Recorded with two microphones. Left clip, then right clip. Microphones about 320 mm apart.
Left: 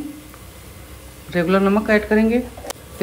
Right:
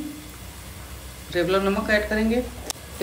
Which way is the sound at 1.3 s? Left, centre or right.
Centre.